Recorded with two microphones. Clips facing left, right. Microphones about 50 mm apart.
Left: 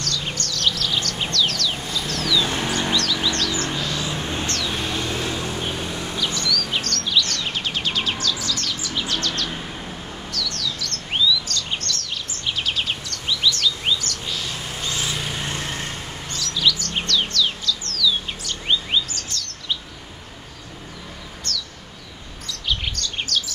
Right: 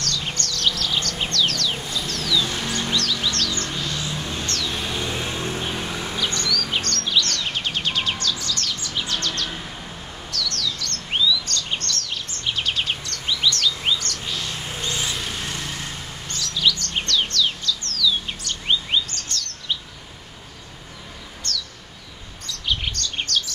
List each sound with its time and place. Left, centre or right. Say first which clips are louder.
0.0 s bird: even; centre
4.2 s music: left 3 dB; left
4.5 s a sound: left 2 dB; centre
5.1 s music: left 1 dB; right
6.1 s bird vocalization: left 1 dB; centre
9.0 s bird: left 1 dB; centre
11.4 s bird vocalization: even; centre
16.3 s bird: even; centre
19.0 s chirp: even; centre
22.5 s bird: even; centre